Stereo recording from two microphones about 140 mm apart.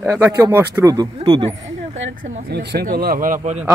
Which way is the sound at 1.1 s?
35° right (ahead or behind).